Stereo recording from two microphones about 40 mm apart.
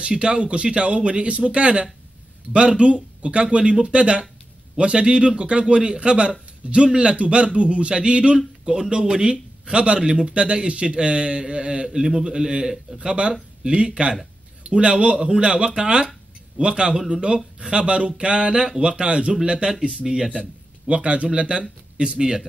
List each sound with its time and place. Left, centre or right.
0.0 s a man's voice: right
8.4 s a man's voice: centre
20.0 s speech: centre
20.3 s a man's voice: right